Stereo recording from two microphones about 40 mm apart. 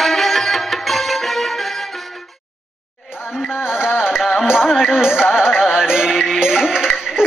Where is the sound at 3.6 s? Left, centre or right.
Centre.